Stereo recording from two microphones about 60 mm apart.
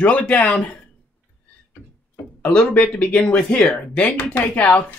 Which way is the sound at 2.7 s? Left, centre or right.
Left.